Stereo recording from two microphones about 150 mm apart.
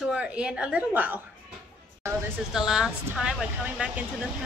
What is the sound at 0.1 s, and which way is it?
A woman's voice, 5° right (ahead or behind).